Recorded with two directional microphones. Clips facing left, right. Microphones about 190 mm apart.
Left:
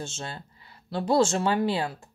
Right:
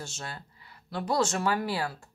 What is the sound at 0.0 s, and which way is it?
Speech, 25° left (ahead or behind).